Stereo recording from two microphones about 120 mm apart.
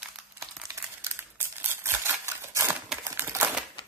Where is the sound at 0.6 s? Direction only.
25° right (ahead or behind).